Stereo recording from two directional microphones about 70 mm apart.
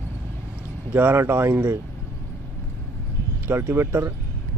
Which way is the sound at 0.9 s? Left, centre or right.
Right.